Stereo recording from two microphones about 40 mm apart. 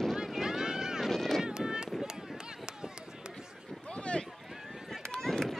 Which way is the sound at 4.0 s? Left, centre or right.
Left.